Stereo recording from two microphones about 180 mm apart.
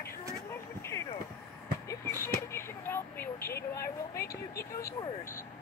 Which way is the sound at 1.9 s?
15° left (ahead or behind).